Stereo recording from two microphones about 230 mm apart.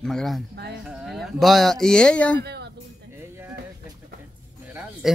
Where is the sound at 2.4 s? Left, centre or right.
Right.